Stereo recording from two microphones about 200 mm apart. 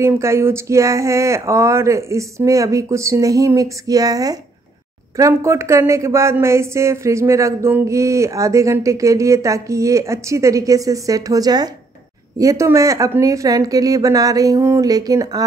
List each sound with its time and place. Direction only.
0.0 s speech: 15° right (ahead or behind)